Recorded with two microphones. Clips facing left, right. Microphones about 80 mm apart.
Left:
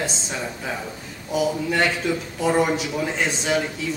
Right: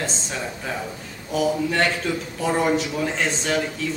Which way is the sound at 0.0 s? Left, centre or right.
Centre.